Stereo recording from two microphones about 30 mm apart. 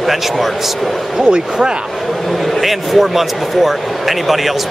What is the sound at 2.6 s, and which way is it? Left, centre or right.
Speech, centre.